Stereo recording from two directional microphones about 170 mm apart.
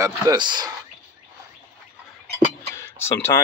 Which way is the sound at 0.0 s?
20° right (ahead or behind).